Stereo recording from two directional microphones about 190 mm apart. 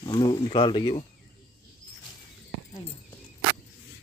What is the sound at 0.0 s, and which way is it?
Speech, 20° left (ahead or behind).